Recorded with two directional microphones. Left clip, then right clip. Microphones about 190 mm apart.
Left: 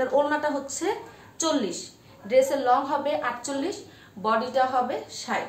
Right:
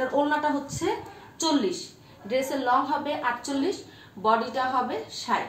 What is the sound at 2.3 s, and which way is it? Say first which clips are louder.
A woman's voice: left 4 dB; 35° left (ahead or behind).